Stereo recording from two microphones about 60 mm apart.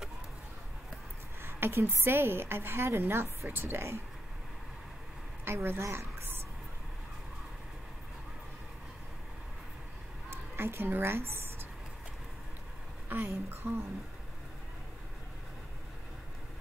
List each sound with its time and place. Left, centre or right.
1.4 s a woman's voice: right
5.4 s a woman's voice: right
10.3 s speech: right
13.1 s speech: right